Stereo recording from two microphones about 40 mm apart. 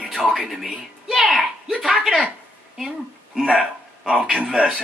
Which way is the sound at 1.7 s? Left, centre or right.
Right.